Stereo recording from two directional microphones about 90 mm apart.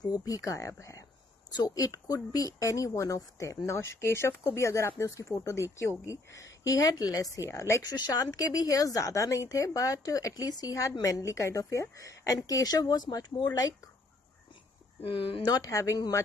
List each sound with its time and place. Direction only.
0.0 s speech: 45° left (ahead or behind)
7.9 s speech: 45° left (ahead or behind)
15.4 s speech: 40° left (ahead or behind)